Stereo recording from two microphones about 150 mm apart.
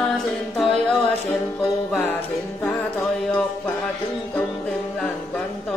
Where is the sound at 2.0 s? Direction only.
15° left (ahead or behind).